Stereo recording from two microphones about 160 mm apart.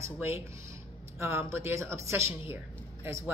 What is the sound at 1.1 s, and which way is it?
Speech, 15° right (ahead or behind).